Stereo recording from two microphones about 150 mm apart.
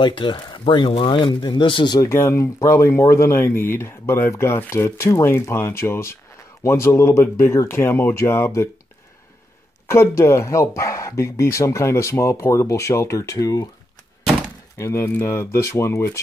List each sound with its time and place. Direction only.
0.0 s speech: 30° left (ahead or behind)
2.0 s speech: 20° left (ahead or behind)
9.8 s speech: 20° left (ahead or behind)
14.8 s speech: 20° left (ahead or behind)